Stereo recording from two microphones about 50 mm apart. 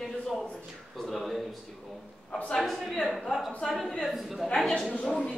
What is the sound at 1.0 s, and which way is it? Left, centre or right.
Speech, centre.